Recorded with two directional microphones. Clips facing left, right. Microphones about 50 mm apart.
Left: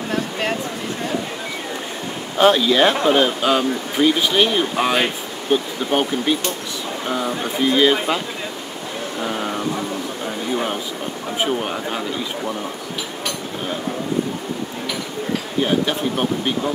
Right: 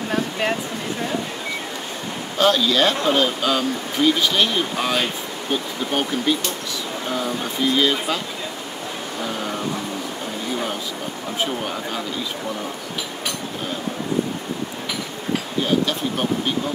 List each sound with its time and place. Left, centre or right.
0.1 s speech: centre
2.3 s speech: centre
9.2 s vehicle: centre
11.3 s speech: centre
15.6 s bee: left
16.2 s speech: centre